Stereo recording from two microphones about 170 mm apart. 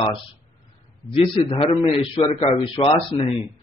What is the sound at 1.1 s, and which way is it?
A man's voice, 30° left (ahead or behind).